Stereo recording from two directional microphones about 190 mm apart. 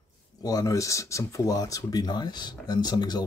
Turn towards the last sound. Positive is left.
turn(degrees=20)  # may be behind; listen again after turning